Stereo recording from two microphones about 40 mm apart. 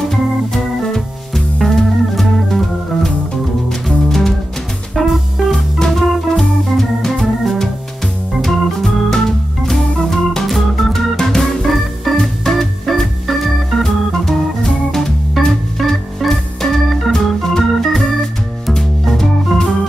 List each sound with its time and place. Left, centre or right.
0.1 s organ: centre
3.8 s music: centre
4.9 s music: centre
5.5 s organ: centre
11.6 s organ: centre
15.4 s organ: centre